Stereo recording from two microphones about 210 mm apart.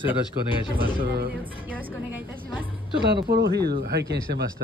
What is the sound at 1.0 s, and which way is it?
Speech, 45° right (ahead or behind).